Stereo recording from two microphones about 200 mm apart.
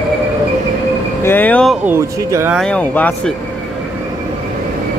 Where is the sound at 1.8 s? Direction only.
10° right (ahead or behind).